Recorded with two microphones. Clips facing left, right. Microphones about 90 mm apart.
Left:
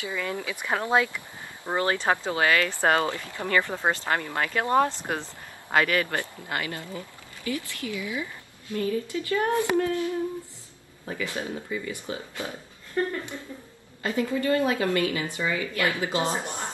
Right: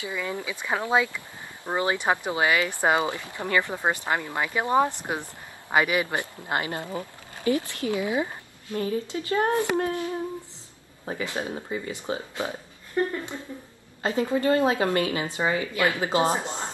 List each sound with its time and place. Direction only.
0.0 s speech: 15° right (ahead or behind)
11.1 s speech: 25° right (ahead or behind)